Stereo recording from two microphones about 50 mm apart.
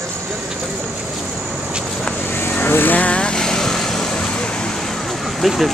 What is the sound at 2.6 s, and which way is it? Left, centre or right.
Vehicle, left.